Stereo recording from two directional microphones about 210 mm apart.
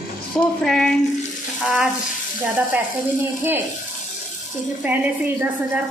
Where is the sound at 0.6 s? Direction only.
Centre (ahead or behind).